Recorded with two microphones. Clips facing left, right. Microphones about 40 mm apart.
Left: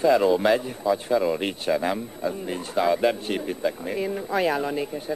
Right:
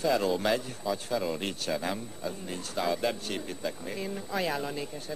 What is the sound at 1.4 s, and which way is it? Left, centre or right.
Speech, left.